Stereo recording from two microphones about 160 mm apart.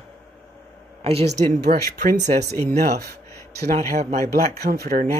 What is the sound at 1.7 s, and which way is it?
Speech, 60° right (ahead or behind).